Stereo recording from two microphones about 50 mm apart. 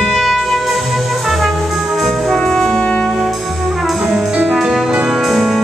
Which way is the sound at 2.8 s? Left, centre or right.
Left.